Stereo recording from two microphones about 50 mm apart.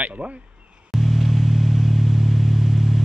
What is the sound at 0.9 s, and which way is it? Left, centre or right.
Vehicle, centre.